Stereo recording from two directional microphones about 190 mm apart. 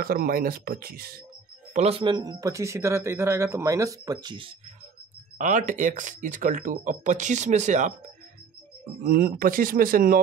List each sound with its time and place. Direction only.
0.0 s speech: 50° right (ahead or behind)
1.7 s speech: 35° right (ahead or behind)
5.4 s speech: 40° right (ahead or behind)
9.0 s speech: 50° right (ahead or behind)